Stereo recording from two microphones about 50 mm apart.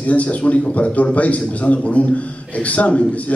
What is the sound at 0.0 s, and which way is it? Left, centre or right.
A man's voice, left.